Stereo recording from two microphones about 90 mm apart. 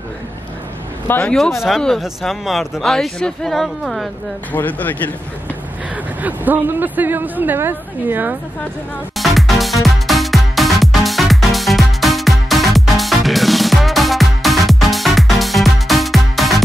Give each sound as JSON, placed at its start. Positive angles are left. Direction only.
{"t": 1.2, "sound": "speech", "side_deg": 5}
{"t": 4.5, "sound": "speech", "side_deg": 20}
{"t": 6.2, "sound": "speech", "side_deg": -20}
{"t": 9.1, "sound": "music", "side_deg": 0}